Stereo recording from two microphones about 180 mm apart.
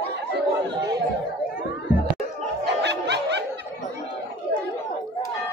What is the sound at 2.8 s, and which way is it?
Snicker, 70° right (ahead or behind).